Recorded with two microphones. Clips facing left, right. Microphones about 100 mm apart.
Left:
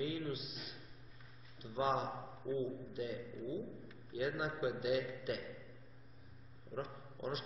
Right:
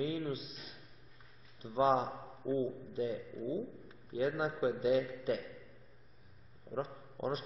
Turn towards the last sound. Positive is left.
turn(degrees=-30)  # may be behind; listen again after turning